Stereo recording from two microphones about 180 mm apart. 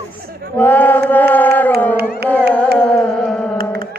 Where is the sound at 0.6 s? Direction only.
10° left (ahead or behind).